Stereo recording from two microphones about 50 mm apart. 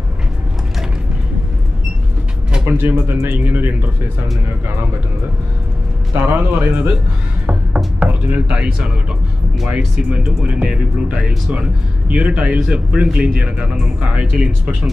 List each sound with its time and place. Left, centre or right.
2.8 s speech: right
6.1 s a man's voice: right
7.4 s music: right
9.8 s speech: right